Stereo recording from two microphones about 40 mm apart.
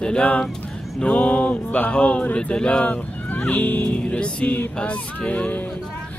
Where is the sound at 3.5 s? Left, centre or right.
Left.